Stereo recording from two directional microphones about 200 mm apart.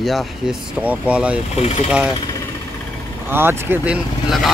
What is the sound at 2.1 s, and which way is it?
Engine, 20° left (ahead or behind).